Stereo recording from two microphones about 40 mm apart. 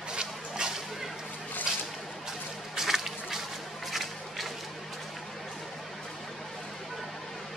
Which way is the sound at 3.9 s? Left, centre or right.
Centre.